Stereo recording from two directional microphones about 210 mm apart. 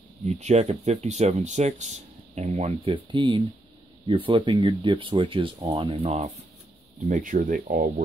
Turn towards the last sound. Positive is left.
turn(degrees=-35)  # may be behind; listen again after turning